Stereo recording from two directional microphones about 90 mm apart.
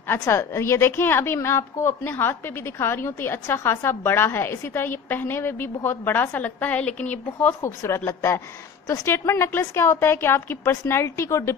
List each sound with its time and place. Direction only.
0.3 s a woman's voice: 30° left (ahead or behind)
7.6 s a woman's voice: 30° left (ahead or behind)